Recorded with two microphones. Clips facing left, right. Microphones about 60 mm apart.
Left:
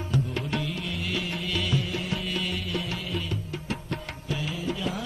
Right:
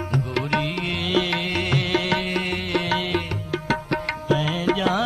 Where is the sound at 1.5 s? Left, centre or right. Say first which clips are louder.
Right 3 dB; right.